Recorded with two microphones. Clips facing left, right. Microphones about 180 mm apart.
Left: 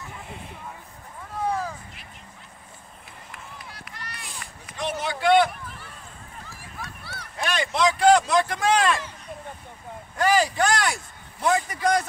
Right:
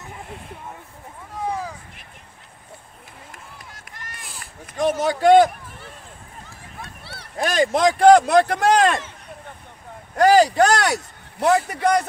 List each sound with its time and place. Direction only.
3.3 s run: 45° right (ahead or behind)
4.6 s speech: 45° right (ahead or behind)
6.8 s a sound: 30° right (ahead or behind); by 8.2 s 50° right (ahead or behind)
8.3 s a man's voice: 60° right (ahead or behind)
10.2 s speech: 40° right (ahead or behind)
10.5 s a man's voice: 70° right (ahead or behind)